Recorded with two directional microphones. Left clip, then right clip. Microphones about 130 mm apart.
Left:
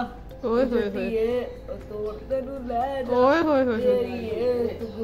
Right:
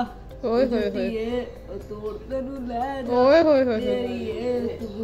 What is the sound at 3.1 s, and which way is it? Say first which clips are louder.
Speech: right 4 dB; centre (ahead or behind).